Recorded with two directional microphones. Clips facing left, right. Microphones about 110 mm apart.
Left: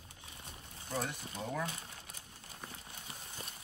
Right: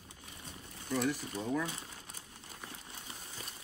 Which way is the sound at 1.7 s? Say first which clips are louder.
Right 1 dB; 25° right (ahead or behind).